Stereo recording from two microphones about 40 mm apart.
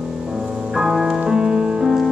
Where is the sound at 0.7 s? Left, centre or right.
Centre.